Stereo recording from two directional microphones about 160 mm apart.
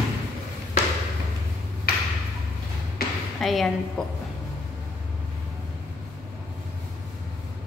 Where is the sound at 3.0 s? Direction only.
70° left (ahead or behind).